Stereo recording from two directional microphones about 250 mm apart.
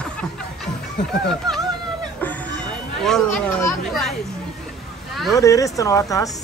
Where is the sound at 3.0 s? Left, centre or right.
Centre.